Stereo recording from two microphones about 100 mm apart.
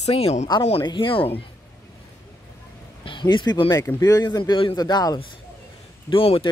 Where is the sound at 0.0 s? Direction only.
85° left.